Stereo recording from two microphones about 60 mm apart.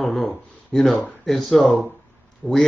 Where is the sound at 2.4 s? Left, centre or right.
Centre.